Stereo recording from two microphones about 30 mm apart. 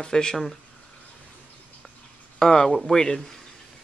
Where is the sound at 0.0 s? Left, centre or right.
Left.